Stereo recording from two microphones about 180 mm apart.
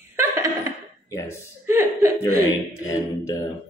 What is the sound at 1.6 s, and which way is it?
Speech, 15° right (ahead or behind).